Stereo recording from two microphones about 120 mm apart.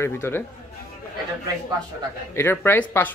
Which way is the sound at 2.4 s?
20° left (ahead or behind).